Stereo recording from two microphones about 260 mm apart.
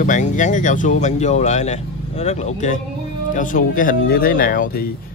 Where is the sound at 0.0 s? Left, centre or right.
Left.